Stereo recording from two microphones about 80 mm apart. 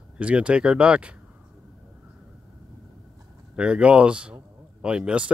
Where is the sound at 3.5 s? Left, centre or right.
Centre.